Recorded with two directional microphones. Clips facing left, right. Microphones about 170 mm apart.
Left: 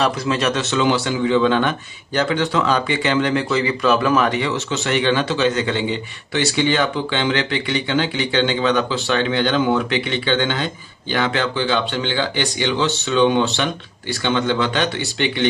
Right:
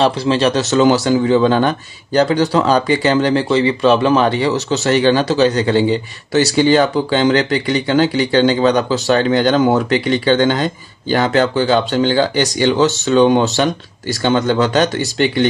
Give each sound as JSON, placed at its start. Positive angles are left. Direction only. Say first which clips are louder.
{"t": 0.0, "sound": "a man's voice", "louder": "right 5 dB", "side_deg": -30}